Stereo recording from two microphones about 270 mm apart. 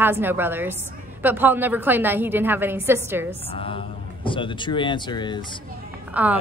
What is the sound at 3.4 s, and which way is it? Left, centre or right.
Speech, centre.